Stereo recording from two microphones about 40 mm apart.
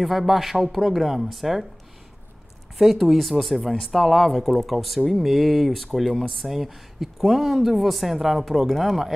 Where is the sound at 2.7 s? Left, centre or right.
Centre.